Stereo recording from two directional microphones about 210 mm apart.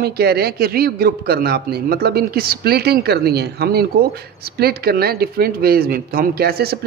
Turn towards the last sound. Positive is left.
turn(degrees=-45)  # may be behind; listen again after turning